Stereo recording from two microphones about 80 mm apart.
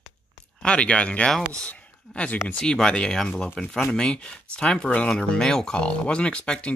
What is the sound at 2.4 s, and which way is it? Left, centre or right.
Speech, centre.